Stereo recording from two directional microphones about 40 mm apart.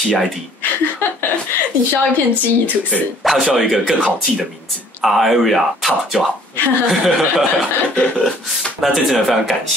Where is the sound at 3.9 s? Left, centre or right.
Right.